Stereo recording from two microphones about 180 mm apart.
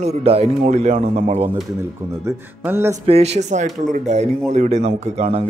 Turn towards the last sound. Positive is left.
turn(degrees=-35)  # may be behind; listen again after turning